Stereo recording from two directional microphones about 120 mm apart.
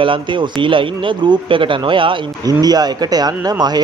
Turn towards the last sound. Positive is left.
turn(degrees=-35)  # may be behind; listen again after turning